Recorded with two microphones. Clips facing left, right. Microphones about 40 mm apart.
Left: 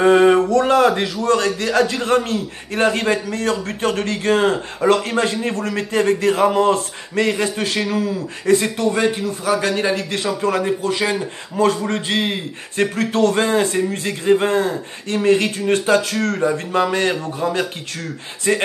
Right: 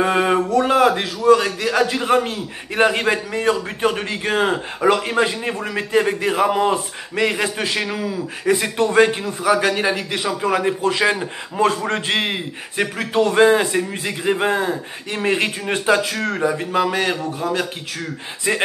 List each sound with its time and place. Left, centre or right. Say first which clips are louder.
0.0 s a man's voice: left 5 dB; centre
8.9 s a man's voice: right 4 dB; right
9.4 s a man's voice: right 2 dB; centre
10.8 s a man's voice: right 2 dB; right
16.4 s a man's voice: right 1 dB; centre
18.5 s a man's voice: left 2 dB; centre